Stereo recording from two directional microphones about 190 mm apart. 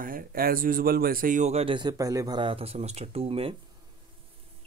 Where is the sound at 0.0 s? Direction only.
50° right (ahead or behind); by 3.5 s 30° right (ahead or behind).